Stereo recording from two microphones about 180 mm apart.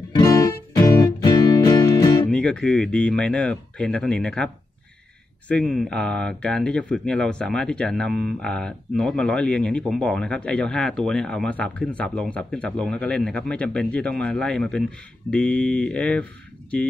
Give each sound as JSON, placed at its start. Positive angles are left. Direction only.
{"t": 0.1, "sound": "music", "side_deg": 20}
{"t": 2.3, "sound": "speech", "side_deg": 5}
{"t": 5.5, "sound": "speech", "side_deg": 5}
{"t": 15.3, "sound": "mantra", "side_deg": 5}